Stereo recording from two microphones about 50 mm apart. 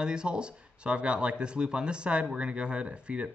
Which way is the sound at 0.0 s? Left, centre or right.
Centre.